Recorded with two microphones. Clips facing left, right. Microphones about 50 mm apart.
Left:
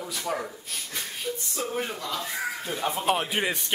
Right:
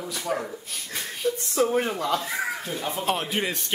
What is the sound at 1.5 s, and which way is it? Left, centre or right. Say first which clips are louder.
Speech: right 8 dB; right.